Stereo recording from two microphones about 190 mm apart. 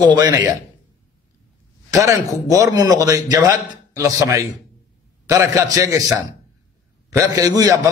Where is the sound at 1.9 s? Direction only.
15° right (ahead or behind).